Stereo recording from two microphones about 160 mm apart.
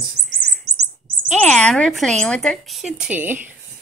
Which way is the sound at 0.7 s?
90° right.